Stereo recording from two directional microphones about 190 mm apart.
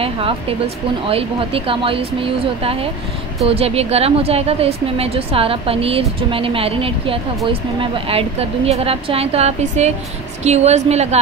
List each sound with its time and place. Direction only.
0.0 s a woman's voice: 30° right (ahead or behind)